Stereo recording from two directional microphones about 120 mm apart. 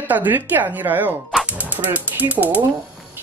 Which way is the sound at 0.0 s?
15° right (ahead or behind).